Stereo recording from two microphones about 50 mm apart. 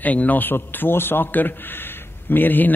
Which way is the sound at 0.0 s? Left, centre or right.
Left.